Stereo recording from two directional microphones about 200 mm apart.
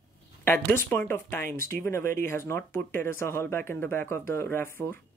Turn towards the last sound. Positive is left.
turn(degrees=10)  # may be behind; listen again after turning